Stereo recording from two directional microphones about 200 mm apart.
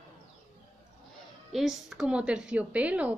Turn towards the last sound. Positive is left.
turn(degrees=-5)  # may be behind; listen again after turning